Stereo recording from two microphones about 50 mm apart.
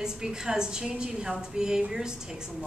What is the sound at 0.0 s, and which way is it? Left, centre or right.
Speech, centre.